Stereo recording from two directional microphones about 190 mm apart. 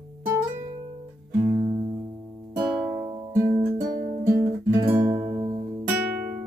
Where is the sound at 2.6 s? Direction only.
5° right (ahead or behind).